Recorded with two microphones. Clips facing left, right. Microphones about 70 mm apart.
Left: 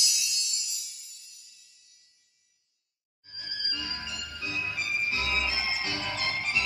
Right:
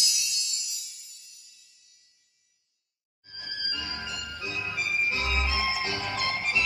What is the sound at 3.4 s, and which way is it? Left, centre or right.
Music, right.